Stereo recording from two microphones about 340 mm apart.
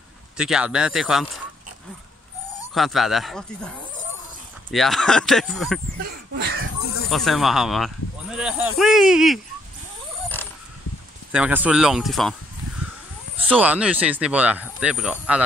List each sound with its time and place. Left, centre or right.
0.4 s speech: centre
2.7 s speech: centre
6.0 s a sound: right
7.1 s speech: centre
11.3 s speech: centre
13.5 s speech: centre